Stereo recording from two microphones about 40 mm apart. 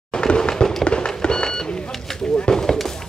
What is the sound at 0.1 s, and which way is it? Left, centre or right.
Fireworks, left.